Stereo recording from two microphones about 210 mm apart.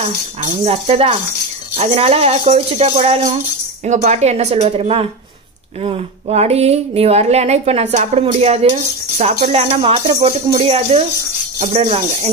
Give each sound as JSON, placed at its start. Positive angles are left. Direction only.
{"t": 0.0, "sound": "speech", "side_deg": -25}